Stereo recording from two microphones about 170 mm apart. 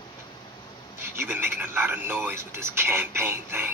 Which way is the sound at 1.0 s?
10° right (ahead or behind).